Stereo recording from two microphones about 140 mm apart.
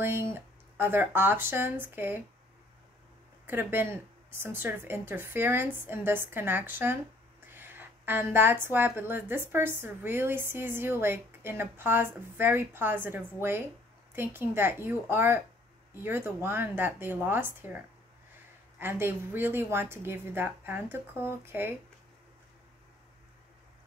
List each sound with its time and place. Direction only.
0.0 s a woman's voice: 15° right (ahead or behind)
3.4 s a woman's voice: 15° right (ahead or behind)